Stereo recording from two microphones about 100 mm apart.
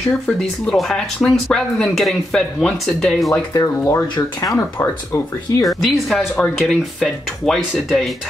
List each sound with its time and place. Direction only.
0.7 s speech: 5° left (ahead or behind)
3.5 s speech: 30° left (ahead or behind)
4.1 s speech: 40° left (ahead or behind)
4.6 s speech: 25° left (ahead or behind)
5.7 s speech: centre (ahead or behind)